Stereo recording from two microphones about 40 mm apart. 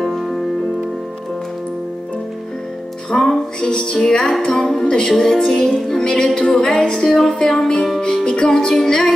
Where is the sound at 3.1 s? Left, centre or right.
Left.